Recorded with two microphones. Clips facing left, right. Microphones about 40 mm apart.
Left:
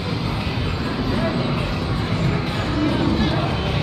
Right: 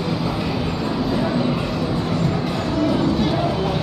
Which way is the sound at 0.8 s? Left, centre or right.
Centre.